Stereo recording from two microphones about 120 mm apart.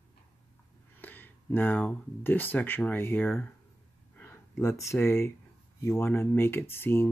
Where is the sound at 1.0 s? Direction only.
15° left (ahead or behind).